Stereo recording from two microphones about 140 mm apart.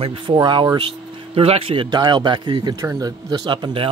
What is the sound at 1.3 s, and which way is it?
Speech, 45° right (ahead or behind).